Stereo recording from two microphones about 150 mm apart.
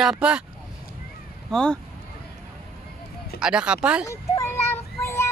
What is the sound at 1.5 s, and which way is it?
Speech, 5° left (ahead or behind).